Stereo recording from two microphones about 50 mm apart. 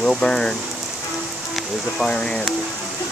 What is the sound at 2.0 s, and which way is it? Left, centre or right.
Speech, centre.